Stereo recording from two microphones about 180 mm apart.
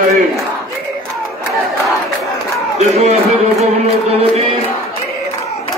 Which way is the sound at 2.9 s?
35° right (ahead or behind).